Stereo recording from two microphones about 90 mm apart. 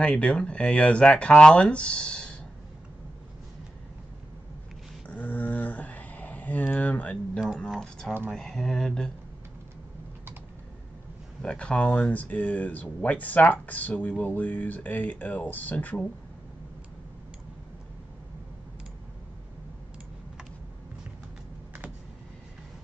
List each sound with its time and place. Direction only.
0.0 s speech: 10° left (ahead or behind)
5.0 s a sound: 20° left (ahead or behind)
7.5 s speech: 5° left (ahead or behind)
11.4 s speech: 10° left (ahead or behind)